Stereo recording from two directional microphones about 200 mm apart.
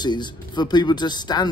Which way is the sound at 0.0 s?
20° left (ahead or behind).